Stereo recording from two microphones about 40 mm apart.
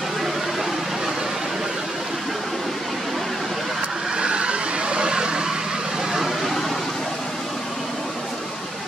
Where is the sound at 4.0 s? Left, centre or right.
Centre.